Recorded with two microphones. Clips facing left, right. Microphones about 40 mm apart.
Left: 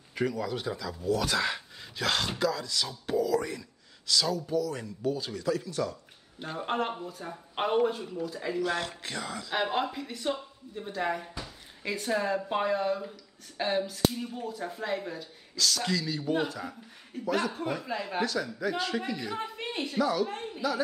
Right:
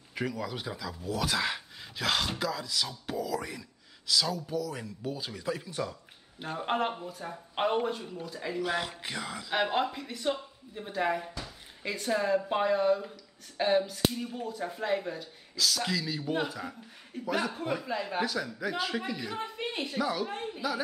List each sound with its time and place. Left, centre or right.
0.1 s speech: centre
5.4 s speech: right
6.6 s speech: centre